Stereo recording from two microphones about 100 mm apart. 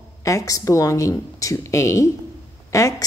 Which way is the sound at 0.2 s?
35° left (ahead or behind).